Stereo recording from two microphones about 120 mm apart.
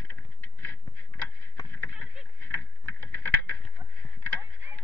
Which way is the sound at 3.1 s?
15° left (ahead or behind).